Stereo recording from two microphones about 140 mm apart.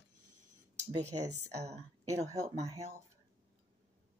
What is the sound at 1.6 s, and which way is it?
Speech, 20° right (ahead or behind).